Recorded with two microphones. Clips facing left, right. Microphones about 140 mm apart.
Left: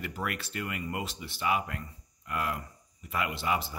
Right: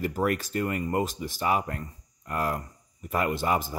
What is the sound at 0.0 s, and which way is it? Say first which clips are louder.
Speech: right 9 dB; 40° right (ahead or behind).